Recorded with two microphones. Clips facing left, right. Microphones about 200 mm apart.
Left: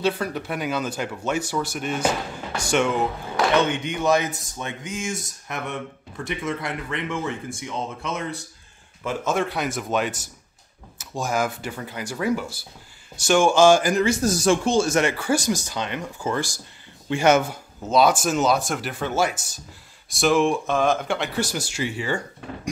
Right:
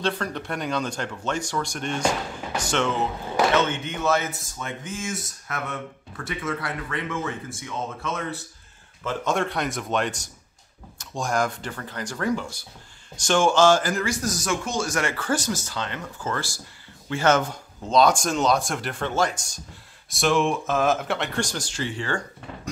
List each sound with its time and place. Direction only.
0.0 s speech: 5° left (ahead or behind)
9.0 s speech: 5° left (ahead or behind)